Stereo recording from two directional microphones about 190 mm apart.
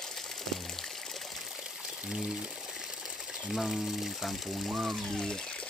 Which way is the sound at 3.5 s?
Centre (ahead or behind).